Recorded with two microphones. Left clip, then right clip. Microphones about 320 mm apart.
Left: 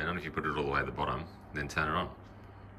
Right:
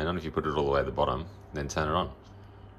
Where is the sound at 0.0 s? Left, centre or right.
Centre.